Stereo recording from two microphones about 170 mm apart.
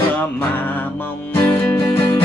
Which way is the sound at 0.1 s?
10° left (ahead or behind).